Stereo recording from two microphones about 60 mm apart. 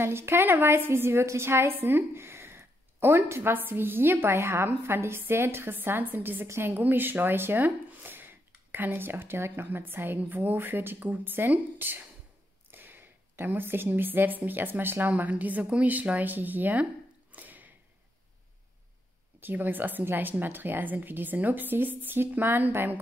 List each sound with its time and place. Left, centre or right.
0.0 s a woman's voice: right
6.4 s a woman's voice: right
6.7 s a woman's voice: right
17.3 s a sound: right
19.4 s a woman's voice: right